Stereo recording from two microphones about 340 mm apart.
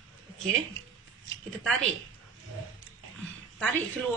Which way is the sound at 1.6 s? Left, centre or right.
Centre.